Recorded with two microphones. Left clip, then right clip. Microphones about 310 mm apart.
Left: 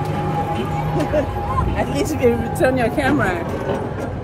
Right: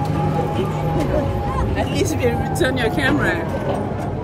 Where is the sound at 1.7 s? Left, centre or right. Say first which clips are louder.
Even; left.